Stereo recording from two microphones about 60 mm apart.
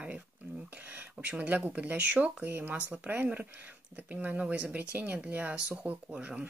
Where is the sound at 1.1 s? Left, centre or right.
Centre.